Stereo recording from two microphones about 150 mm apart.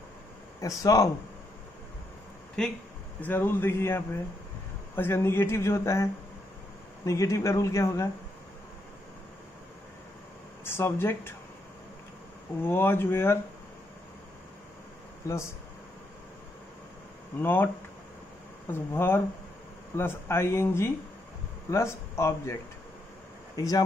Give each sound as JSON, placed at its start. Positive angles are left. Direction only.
{"t": 0.6, "sound": "a man's voice", "side_deg": 20}
{"t": 2.6, "sound": "speech", "side_deg": 5}
{"t": 3.2, "sound": "speech", "side_deg": 15}
{"t": 7.1, "sound": "a man's voice", "side_deg": 20}
{"t": 10.6, "sound": "speech", "side_deg": 15}
{"t": 12.6, "sound": "speech", "side_deg": 15}
{"t": 17.4, "sound": "speech", "side_deg": 15}
{"t": 18.7, "sound": "speech", "side_deg": 15}